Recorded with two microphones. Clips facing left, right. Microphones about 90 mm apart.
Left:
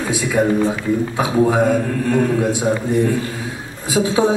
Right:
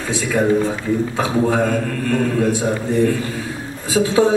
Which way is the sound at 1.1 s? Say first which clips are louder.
Left 3 dB; 15° left (ahead or behind).